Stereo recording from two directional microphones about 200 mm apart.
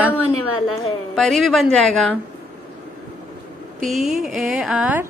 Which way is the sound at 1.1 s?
Centre (ahead or behind).